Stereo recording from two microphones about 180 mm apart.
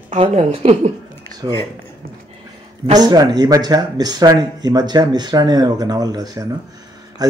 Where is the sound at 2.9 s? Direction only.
20° right (ahead or behind).